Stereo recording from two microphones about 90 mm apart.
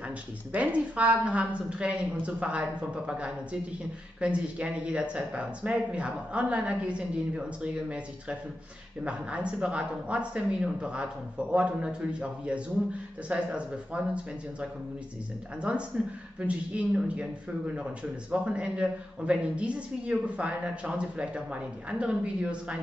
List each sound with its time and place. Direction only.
0.5 s a woman's voice: 15° right (ahead or behind)
15.7 s a woman's voice: 15° right (ahead or behind)
18.3 s a woman's voice: 10° right (ahead or behind)